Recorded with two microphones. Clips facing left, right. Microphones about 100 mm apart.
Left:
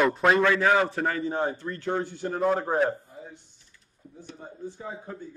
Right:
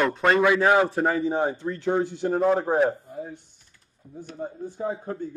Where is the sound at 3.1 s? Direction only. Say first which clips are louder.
Right 8 dB; 45° right (ahead or behind).